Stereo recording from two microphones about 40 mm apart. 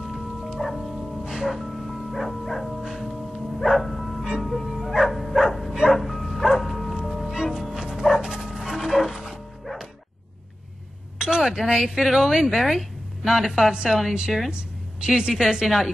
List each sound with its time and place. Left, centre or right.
0.1 s music: centre
0.6 s music: centre
1.2 s music: centre
1.5 s music: centre
2.8 s gong: centre
3.6 s music: centre
4.8 s bow-wow: centre
5.9 s music: centre
8.7 s music: centre
11.1 s a sound: right
12.2 s a woman's voice: centre
13.8 s a woman's voice: centre
14.1 s a woman's voice: right